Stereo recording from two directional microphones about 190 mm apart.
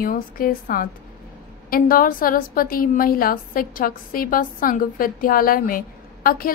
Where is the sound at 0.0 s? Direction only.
50° left (ahead or behind).